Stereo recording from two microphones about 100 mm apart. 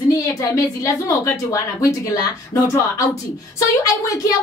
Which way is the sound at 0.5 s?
30° left (ahead or behind).